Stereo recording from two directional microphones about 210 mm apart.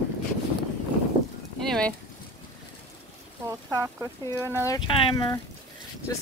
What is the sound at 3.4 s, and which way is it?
Speech, 15° right (ahead or behind).